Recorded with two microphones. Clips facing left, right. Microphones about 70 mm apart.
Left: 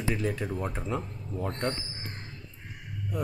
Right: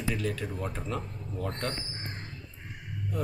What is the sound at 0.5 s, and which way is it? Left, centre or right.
Speech, centre.